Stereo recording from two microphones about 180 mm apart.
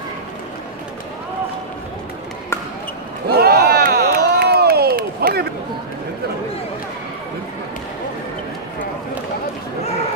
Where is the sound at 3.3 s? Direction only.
60° right (ahead or behind).